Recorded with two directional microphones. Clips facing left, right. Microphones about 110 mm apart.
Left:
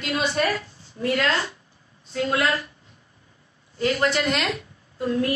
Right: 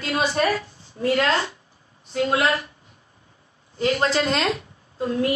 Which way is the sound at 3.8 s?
25° right (ahead or behind).